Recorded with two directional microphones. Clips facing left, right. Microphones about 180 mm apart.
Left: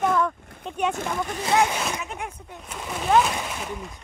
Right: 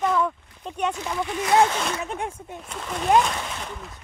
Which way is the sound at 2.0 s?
30° right (ahead or behind).